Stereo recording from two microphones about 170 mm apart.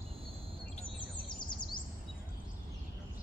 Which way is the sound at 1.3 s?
25° left (ahead or behind).